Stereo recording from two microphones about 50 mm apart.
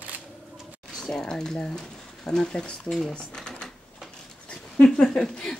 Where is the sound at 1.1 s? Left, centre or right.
Centre.